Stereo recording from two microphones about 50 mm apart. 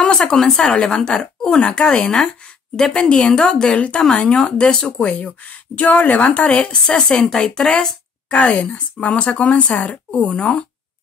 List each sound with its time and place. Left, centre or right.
0.0 s speech: centre
5.8 s speech: left